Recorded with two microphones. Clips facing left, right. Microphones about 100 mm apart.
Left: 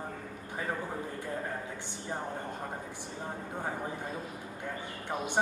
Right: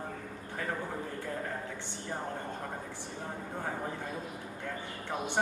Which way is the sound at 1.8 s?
15° left (ahead or behind).